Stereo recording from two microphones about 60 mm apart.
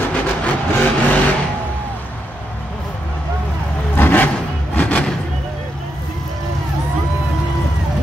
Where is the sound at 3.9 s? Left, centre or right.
Left.